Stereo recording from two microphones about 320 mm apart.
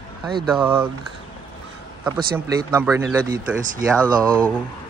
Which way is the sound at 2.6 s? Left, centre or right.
Centre.